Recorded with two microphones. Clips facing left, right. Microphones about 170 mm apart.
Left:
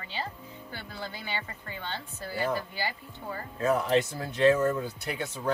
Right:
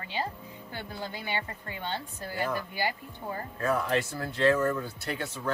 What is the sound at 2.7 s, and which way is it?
Speech, 15° right (ahead or behind).